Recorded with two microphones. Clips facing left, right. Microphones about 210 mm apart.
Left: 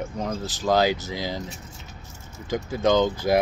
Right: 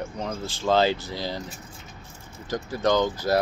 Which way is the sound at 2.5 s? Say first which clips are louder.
Left 2 dB; 10° left (ahead or behind).